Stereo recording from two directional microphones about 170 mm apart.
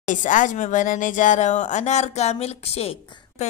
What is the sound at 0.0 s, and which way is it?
Speech, 50° left (ahead or behind).